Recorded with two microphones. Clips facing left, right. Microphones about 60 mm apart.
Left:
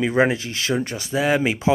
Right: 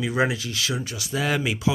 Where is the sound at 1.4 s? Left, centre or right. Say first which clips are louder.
Left 4 dB; left.